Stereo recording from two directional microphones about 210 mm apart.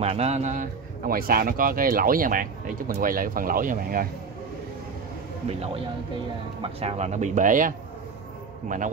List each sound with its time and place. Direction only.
0.0 s speech: 30° right (ahead or behind)
6.6 s speech: 30° right (ahead or behind)